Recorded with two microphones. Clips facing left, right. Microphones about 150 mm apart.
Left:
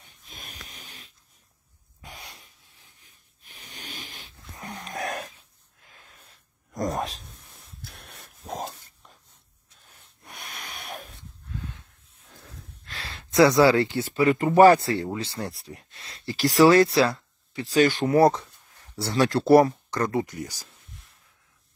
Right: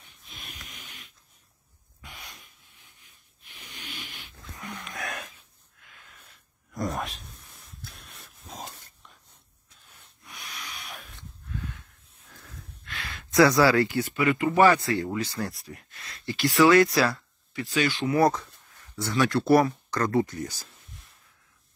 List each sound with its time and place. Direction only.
0.3 s a sound: 40° left (ahead or behind)
2.0 s dog: 30° left (ahead or behind)
3.4 s a sound: 40° left (ahead or behind)
4.6 s dog: 40° left (ahead or behind)
5.8 s a sound: 35° left (ahead or behind)
7.9 s a sound: 60° left (ahead or behind)
10.2 s snort: 50° left (ahead or behind)
12.8 s gasp: 35° left (ahead or behind)
14.2 s speech: 40° left (ahead or behind)
15.1 s speech: 25° left (ahead or behind)
17.7 s speech: 45° left (ahead or behind)
18.9 s speech: 30° left (ahead or behind)